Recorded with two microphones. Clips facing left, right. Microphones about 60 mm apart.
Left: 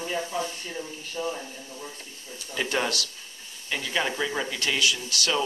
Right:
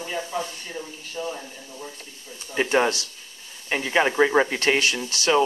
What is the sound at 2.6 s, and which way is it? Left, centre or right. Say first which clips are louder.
Speech: right 6 dB; right.